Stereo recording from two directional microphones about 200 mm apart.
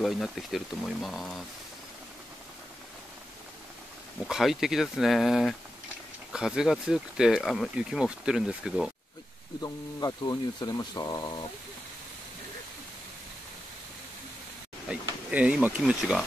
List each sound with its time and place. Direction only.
0.0 s speech: centre (ahead or behind)
4.3 s speech: centre (ahead or behind)
9.6 s speech: 20° left (ahead or behind)
14.9 s speech: 5° right (ahead or behind)